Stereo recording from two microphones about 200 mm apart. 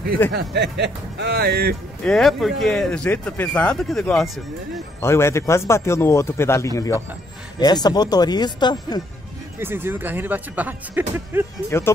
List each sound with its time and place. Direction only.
0.3 s speech: 55° right (ahead or behind)
2.0 s speech: centre (ahead or behind)
5.0 s a man's voice: 15° left (ahead or behind)
9.6 s speech: 10° right (ahead or behind)
11.7 s a man's voice: 15° left (ahead or behind)